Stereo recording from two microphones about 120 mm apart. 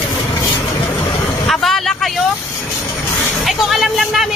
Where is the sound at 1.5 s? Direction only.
Centre (ahead or behind).